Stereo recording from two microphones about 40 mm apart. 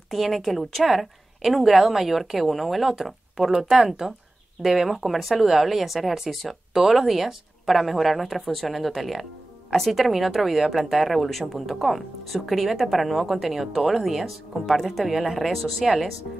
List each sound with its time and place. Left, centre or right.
0.1 s a woman's voice: centre
4.6 s a woman's voice: centre